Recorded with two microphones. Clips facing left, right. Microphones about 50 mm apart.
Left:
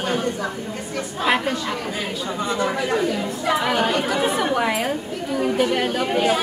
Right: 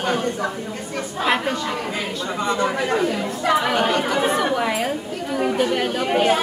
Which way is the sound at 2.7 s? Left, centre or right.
Right.